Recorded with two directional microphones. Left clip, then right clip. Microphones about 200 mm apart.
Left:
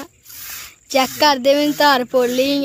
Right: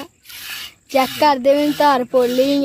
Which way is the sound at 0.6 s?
5° right (ahead or behind).